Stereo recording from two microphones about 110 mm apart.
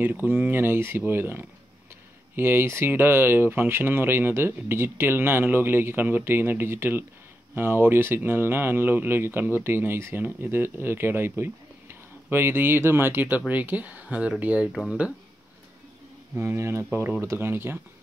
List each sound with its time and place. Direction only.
0.0 s speech: 20° right (ahead or behind)
16.3 s speech: 25° right (ahead or behind)